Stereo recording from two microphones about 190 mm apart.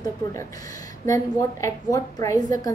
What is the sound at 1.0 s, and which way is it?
A woman's voice, 15° left (ahead or behind).